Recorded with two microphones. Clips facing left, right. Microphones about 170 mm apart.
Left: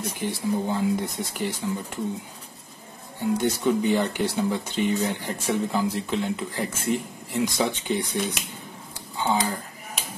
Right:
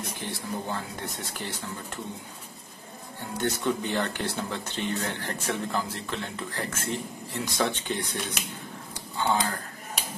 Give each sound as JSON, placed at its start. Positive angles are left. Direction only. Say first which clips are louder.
{"t": 0.2, "sound": "speech", "louder": "left 9 dB", "side_deg": 15}
{"t": 3.2, "sound": "speech", "louder": "left 6 dB", "side_deg": 10}